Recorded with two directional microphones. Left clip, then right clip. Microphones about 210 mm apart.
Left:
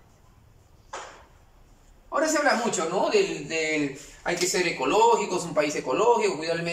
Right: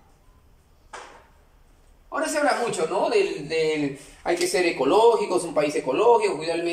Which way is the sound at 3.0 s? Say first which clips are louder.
Right 1 dB; 20° right (ahead or behind).